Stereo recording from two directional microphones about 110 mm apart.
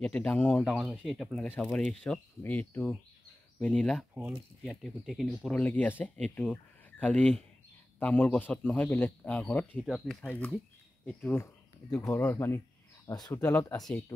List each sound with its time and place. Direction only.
0.0 s a man's voice: 5° left (ahead or behind)
4.1 s speech: 15° right (ahead or behind)
4.6 s speech: centre (ahead or behind)
5.6 s a man's voice: 15° left (ahead or behind)
9.8 s speech: 5° left (ahead or behind)
10.2 s a man's voice: 15° left (ahead or behind)
12.1 s a man's voice: 25° left (ahead or behind)